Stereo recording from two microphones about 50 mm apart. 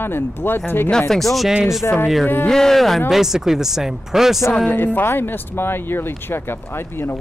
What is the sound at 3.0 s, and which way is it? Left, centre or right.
Speech, centre.